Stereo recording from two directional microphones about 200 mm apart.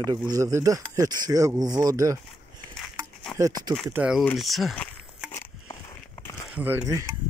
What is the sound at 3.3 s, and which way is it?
Speech, 15° right (ahead or behind).